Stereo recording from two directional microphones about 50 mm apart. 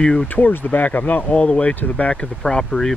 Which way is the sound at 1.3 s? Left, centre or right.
Left.